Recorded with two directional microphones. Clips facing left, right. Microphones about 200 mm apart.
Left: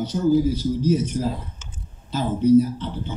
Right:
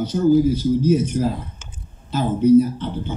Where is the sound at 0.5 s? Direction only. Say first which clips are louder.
Right 4 dB; 55° right (ahead or behind).